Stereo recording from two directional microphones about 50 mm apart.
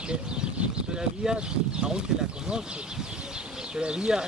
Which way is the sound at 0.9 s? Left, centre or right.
Centre.